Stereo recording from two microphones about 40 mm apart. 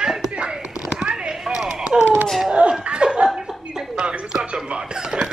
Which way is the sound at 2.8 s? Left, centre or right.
Right.